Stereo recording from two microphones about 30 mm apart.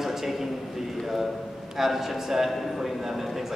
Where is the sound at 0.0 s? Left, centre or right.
Centre.